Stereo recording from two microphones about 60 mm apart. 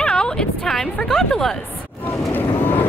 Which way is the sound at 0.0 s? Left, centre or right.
Centre.